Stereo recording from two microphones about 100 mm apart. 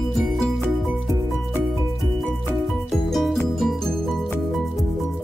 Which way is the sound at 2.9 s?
Centre (ahead or behind).